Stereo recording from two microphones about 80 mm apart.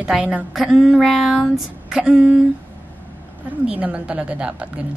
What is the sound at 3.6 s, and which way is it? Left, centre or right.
A woman's voice, centre.